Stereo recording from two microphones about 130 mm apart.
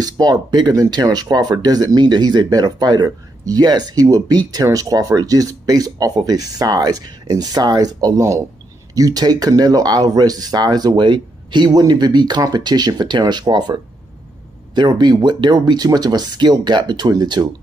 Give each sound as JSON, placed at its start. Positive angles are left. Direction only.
{"t": 0.0, "sound": "speech", "side_deg": -30}